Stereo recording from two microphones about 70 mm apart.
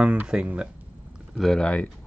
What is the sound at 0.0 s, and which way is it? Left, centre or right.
Speech, centre.